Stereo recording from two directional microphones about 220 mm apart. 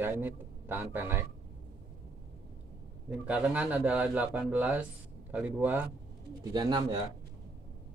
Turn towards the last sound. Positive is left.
turn(degrees=-20)  # may be behind; listen again after turning